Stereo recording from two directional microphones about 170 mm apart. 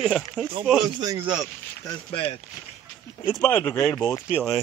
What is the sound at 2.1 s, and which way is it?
Speech, 30° left (ahead or behind).